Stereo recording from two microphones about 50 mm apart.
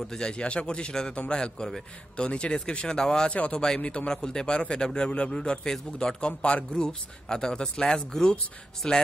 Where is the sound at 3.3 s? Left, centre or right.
Left.